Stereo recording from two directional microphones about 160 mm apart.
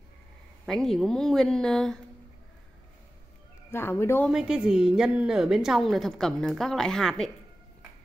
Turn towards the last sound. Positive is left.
turn(degrees=5)  # may be behind; listen again after turning